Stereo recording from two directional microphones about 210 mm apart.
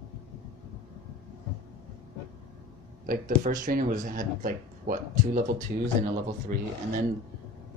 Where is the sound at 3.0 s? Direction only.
40° right (ahead or behind).